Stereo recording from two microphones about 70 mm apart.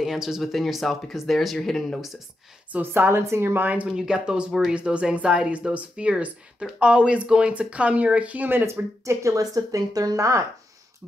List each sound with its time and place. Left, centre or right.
0.0 s speech: centre
2.7 s speech: right